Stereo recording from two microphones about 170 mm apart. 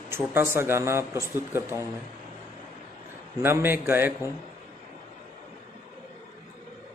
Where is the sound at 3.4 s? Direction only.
10° right (ahead or behind).